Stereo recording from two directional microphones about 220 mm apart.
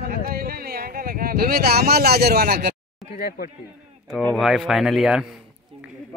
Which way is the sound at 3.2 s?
45° left (ahead or behind).